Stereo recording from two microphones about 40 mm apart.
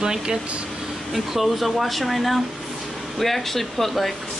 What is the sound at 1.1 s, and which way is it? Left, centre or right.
Speech, centre.